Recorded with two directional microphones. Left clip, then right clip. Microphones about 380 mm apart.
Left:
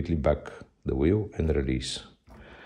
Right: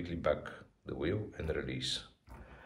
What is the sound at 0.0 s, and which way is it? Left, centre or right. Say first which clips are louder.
Speech: left 7 dB; centre.